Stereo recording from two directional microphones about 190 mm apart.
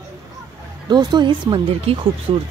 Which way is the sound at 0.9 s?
25° right (ahead or behind).